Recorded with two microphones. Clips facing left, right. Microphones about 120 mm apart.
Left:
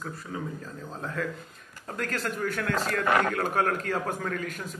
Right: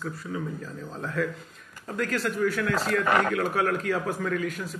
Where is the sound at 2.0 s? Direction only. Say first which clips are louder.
Right 5 dB; 45° left (ahead or behind).